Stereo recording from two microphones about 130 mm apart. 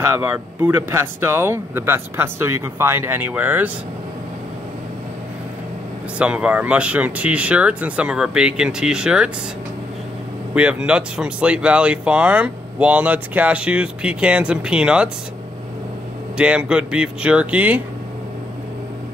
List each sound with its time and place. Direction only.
0.0 s speech: 20° right (ahead or behind)
6.1 s speech: 10° right (ahead or behind)
10.5 s speech: 10° right (ahead or behind)
16.3 s speech: 10° right (ahead or behind)